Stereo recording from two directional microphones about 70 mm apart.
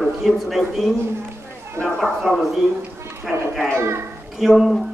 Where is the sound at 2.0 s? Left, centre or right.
Centre.